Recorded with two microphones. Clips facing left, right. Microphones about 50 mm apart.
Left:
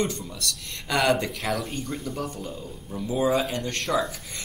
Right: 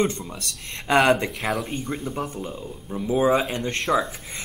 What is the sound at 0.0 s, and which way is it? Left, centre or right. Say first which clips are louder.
Speech: right 3 dB; right.